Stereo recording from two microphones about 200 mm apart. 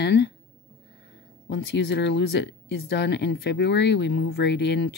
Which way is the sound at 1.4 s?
60° left (ahead or behind).